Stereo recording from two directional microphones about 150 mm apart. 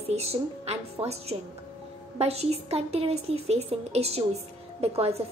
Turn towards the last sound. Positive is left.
turn(degrees=-40)  # may be behind; listen again after turning